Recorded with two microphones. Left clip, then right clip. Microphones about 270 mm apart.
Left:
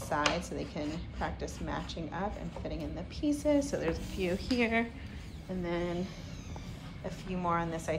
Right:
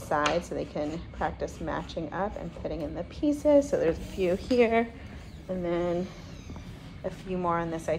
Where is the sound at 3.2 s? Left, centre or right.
Right.